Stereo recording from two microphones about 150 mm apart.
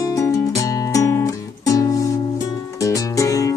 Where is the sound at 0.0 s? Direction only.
20° left (ahead or behind).